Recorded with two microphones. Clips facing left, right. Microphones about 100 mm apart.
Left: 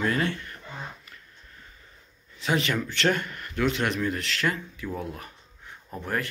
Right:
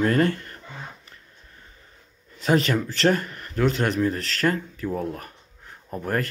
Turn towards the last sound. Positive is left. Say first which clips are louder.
# right 4 dB
turn(degrees=-45)  # may be behind; listen again after turning